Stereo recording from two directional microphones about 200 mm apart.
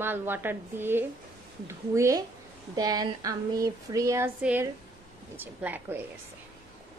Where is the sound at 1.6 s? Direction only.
15° right (ahead or behind).